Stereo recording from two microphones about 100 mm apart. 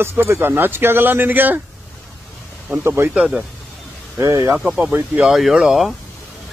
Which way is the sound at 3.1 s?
10° right (ahead or behind).